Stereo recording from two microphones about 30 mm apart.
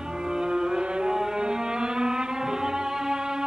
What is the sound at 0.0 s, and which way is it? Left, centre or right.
Music, right.